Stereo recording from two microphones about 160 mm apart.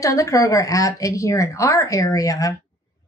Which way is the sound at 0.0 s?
20° left (ahead or behind).